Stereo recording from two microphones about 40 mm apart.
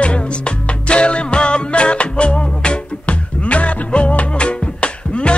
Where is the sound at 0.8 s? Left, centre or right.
Left.